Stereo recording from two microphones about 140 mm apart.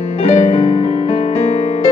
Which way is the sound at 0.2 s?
45° left (ahead or behind).